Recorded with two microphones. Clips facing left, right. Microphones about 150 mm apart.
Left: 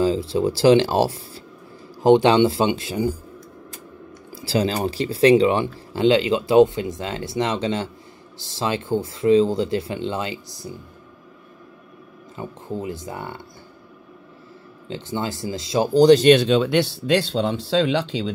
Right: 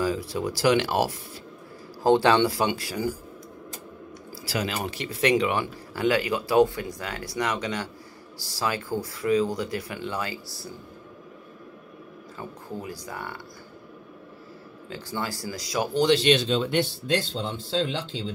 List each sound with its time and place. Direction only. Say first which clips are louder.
0.0 s speech: left 7 dB; 25° left (ahead or behind)
4.3 s speech: left 8 dB; 25° left (ahead or behind)
12.4 s speech: left 7 dB; 20° left (ahead or behind)
14.9 s speech: left 5 dB; 25° left (ahead or behind); by 16.4 s 50° left (ahead or behind)
16.4 s speech: left 6 dB; 85° left